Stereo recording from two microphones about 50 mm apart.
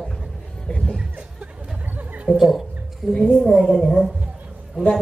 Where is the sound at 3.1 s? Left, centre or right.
Centre.